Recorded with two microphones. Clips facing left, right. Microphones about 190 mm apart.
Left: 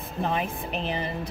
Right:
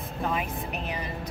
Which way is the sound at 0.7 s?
30° left (ahead or behind).